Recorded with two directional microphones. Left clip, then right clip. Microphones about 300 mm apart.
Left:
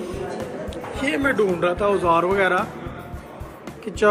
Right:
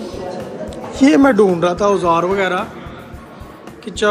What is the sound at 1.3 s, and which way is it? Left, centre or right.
Speech, centre.